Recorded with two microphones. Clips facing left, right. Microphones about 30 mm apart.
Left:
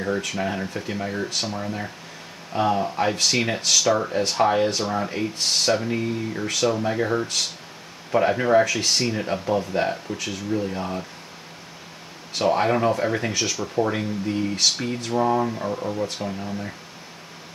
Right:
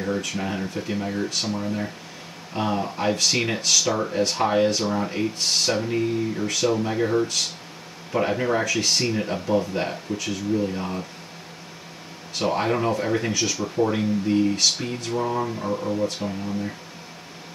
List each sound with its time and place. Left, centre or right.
0.0 s speech: centre
12.4 s speech: centre
15.1 s speech: centre
15.4 s speech: centre